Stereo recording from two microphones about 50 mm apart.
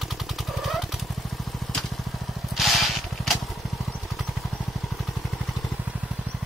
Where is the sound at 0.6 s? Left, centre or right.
Centre.